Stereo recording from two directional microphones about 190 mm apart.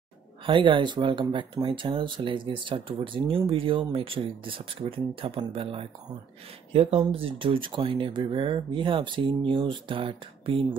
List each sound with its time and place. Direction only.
0.5 s speech: 25° right (ahead or behind)